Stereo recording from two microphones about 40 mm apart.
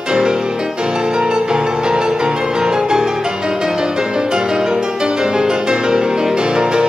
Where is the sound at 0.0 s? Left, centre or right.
Centre.